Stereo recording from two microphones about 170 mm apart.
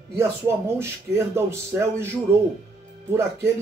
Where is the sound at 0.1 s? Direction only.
15° right (ahead or behind).